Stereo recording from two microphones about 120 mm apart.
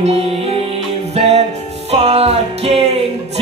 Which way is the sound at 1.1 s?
60° right (ahead or behind).